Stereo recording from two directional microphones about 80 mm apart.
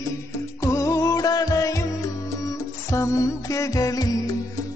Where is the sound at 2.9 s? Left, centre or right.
Left.